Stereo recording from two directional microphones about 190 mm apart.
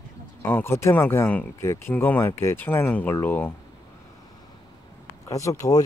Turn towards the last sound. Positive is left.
turn(degrees=15)  # may be behind; listen again after turning